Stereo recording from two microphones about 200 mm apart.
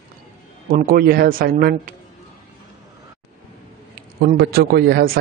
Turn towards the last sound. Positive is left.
turn(degrees=-50)  # may be behind; listen again after turning